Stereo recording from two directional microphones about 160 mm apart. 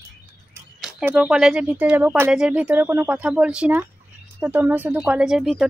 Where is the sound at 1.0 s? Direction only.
5° right (ahead or behind).